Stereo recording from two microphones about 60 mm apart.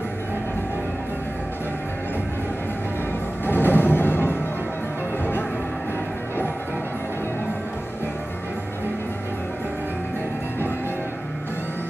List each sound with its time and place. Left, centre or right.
3.4 s music: left